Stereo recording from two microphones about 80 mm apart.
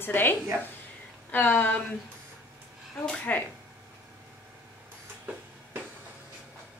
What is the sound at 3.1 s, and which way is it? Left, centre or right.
Speech, left.